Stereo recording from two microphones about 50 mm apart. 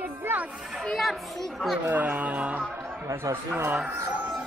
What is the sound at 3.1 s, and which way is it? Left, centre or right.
Speech, right.